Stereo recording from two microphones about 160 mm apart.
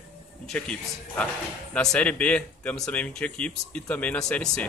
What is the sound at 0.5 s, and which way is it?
A man's voice, 5° left (ahead or behind).